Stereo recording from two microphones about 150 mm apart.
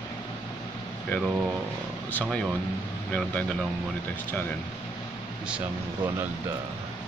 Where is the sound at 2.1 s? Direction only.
10° left (ahead or behind).